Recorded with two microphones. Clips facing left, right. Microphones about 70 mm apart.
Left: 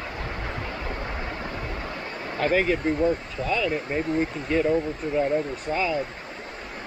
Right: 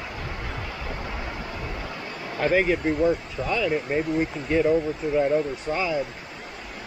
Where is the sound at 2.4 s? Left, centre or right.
Centre.